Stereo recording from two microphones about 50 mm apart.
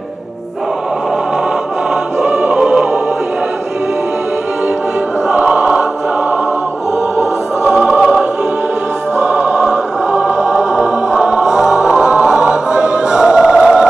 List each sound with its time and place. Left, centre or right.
2.2 s music: right
7.6 s music: centre
9.2 s choir: right